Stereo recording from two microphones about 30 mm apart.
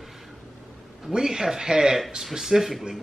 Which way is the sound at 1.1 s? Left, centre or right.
Right.